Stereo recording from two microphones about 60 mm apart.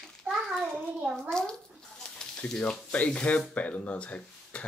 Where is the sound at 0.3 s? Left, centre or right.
Centre.